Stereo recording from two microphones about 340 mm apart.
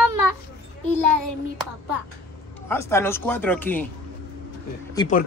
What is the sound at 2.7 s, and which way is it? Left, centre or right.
Speech, centre.